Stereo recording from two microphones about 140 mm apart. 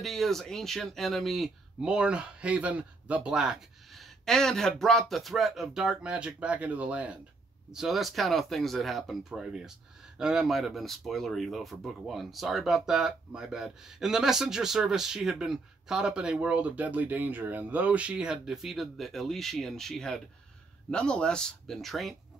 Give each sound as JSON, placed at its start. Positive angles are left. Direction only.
{"t": 0.0, "sound": "speech", "side_deg": 0}